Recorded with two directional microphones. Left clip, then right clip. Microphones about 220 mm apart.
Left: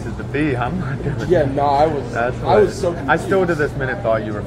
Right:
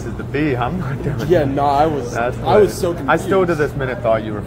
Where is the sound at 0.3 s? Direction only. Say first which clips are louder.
Right 1 dB; 10° right (ahead or behind).